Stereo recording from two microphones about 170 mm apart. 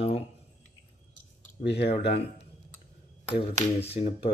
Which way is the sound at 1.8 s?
35° left (ahead or behind).